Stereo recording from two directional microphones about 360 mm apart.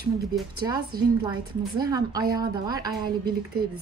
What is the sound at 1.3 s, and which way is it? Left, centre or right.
A woman's voice, centre.